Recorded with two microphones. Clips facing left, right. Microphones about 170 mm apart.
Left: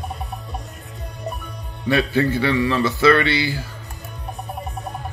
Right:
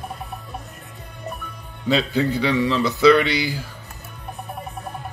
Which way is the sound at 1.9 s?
20° right (ahead or behind).